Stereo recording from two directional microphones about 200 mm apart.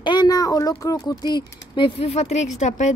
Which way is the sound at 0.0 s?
20° left (ahead or behind).